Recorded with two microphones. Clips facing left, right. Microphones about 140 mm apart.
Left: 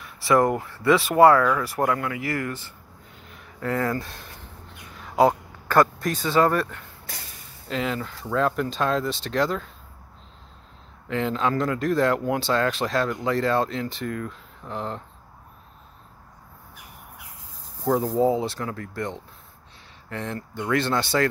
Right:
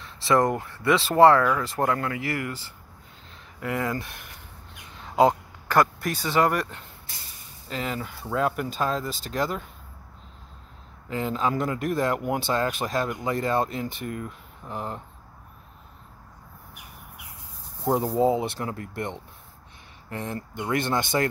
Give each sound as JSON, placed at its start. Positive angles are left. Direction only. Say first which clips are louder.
{"t": 0.0, "sound": "a sound", "louder": "left 2 dB", "side_deg": -25}
{"t": 0.4, "sound": "speech", "louder": "left 3 dB", "side_deg": 20}
{"t": 0.7, "sound": "speech", "louder": "left 3 dB", "side_deg": -20}
{"t": 3.6, "sound": "speech", "louder": "left 3 dB", "side_deg": -20}
{"t": 7.6, "sound": "speech", "louder": "left 3 dB", "side_deg": 0}
{"t": 11.1, "sound": "speech", "louder": "left 2 dB", "side_deg": -10}
{"t": 17.8, "sound": "speech", "louder": "left 1 dB", "side_deg": -20}